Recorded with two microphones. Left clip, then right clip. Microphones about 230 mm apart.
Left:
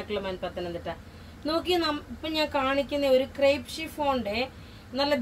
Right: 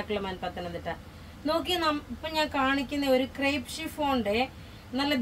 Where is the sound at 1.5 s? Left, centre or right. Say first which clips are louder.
Left 1 dB; right.